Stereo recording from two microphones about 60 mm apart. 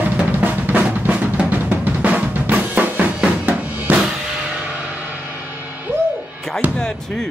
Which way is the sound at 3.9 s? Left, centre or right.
Right.